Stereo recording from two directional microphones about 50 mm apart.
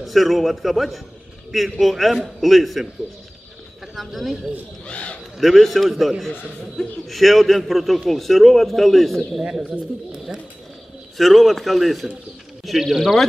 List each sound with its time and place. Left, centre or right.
0.0 s a man's voice: centre
4.8 s a sound: left
5.4 s a man's voice: centre
11.1 s a man's voice: centre